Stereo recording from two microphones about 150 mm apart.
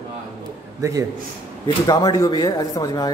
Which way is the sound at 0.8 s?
20° right (ahead or behind).